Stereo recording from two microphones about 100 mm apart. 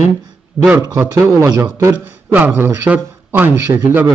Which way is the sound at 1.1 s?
25° right (ahead or behind).